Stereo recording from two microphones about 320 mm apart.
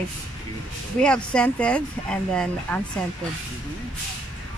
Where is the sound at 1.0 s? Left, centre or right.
Centre.